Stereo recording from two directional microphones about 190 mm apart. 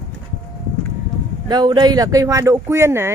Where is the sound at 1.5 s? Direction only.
20° right (ahead or behind).